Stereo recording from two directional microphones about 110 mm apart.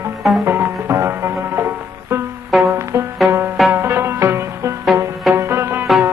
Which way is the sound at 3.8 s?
20° right (ahead or behind).